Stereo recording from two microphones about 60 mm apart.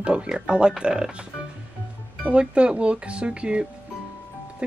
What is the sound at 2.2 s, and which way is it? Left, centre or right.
Speech, centre.